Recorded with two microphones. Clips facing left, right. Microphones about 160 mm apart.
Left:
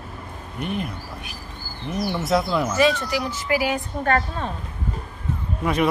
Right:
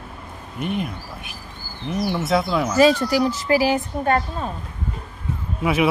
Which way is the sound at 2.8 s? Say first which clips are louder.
Right 7 dB; 35° right (ahead or behind).